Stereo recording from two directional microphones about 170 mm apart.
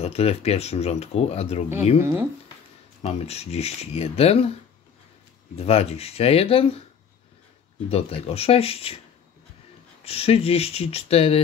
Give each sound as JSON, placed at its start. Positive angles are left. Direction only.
{"t": 0.0, "sound": "speech", "side_deg": 35}
{"t": 2.0, "sound": "speech", "side_deg": -15}
{"t": 3.0, "sound": "speech", "side_deg": 35}
{"t": 5.6, "sound": "speech", "side_deg": 35}
{"t": 7.9, "sound": "speech", "side_deg": 35}
{"t": 10.0, "sound": "speech", "side_deg": 35}